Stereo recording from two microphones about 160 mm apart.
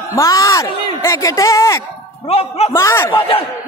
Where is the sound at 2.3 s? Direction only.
40° left (ahead or behind).